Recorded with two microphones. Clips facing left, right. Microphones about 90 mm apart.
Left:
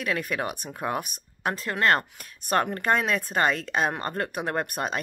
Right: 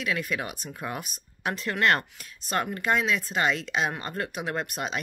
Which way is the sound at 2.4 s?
50° left (ahead or behind).